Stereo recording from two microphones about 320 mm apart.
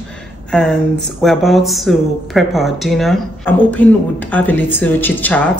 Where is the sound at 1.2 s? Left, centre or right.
Centre.